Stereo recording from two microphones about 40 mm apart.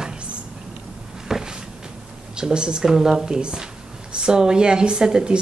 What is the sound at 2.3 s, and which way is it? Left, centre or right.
A woman's voice, centre.